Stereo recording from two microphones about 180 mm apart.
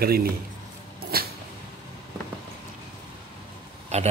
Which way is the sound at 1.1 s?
60° right (ahead or behind).